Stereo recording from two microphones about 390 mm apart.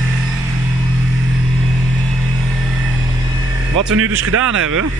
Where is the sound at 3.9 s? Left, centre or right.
Right.